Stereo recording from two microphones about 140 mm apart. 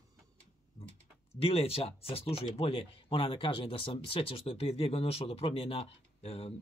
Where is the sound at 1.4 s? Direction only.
45° left (ahead or behind).